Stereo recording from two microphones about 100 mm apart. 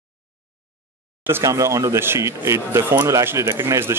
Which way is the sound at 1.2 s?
25° right (ahead or behind).